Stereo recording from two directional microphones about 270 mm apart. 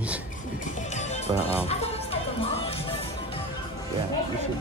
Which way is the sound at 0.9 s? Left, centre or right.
Left.